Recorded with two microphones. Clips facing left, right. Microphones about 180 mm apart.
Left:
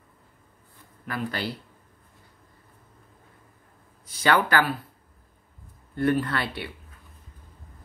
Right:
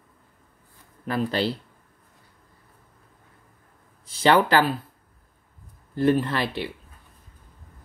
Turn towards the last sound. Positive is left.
turn(degrees=-20)  # may be behind; listen again after turning